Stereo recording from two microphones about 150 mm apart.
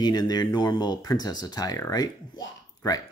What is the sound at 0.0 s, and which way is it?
Speech, 25° left (ahead or behind).